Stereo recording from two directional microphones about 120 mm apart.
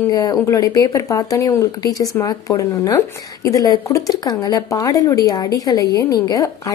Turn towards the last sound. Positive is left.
turn(degrees=30)  # may be behind; listen again after turning